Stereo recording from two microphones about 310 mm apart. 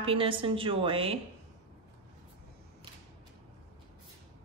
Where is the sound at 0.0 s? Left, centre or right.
Centre.